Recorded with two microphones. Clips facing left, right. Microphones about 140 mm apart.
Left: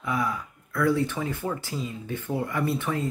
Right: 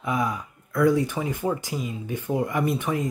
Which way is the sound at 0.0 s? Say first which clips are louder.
Right 2 dB; 20° right (ahead or behind).